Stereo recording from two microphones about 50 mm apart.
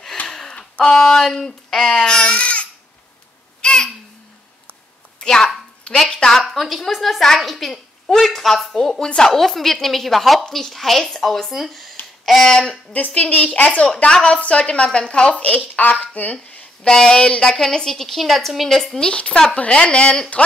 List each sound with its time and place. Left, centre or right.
0.3 s gasp: centre
0.6 s speech: centre
3.6 s babbling: centre
5.2 s a sound: centre
5.9 s speech: centre
6.5 s a woman's voice: centre
12.9 s speech: left
16.9 s a woman's voice: centre
19.0 s speech: centre